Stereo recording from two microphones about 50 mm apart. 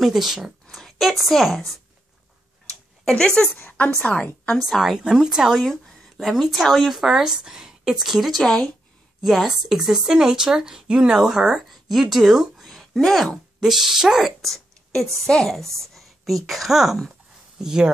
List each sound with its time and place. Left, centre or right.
0.0 s speech: centre
3.1 s a woman's voice: centre
4.6 s speech: centre
5.6 s speech: centre
9.2 s a woman's voice: centre
11.5 s speech: centre
12.6 s a sound: centre
13.6 s a woman's voice: centre
14.4 s a sound: centre
15.2 s speech: centre
15.5 s a woman's voice: centre